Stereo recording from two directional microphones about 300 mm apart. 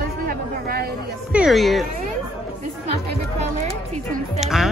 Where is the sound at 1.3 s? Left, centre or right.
Centre.